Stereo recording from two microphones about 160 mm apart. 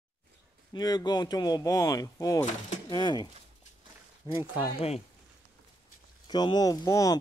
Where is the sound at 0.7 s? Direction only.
25° left (ahead or behind).